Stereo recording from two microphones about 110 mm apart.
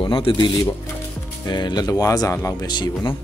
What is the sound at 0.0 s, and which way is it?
Speech, 50° left (ahead or behind).